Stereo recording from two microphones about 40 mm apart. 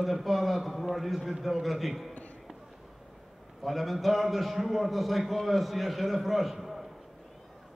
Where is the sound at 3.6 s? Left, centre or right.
Centre.